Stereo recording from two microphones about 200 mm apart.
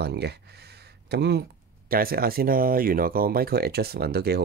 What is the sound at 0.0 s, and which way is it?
Speech, 55° right (ahead or behind).